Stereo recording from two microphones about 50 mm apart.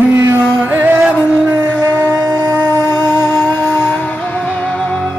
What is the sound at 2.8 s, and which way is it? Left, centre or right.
Music, left.